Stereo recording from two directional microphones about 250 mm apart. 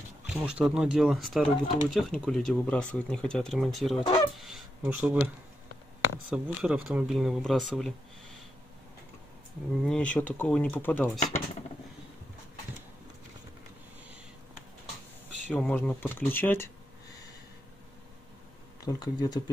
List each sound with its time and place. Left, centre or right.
0.3 s speech: centre
4.4 s a sound: centre
6.3 s speech: centre
9.8 s speech: centre
15.5 s speech: centre
18.9 s speech: centre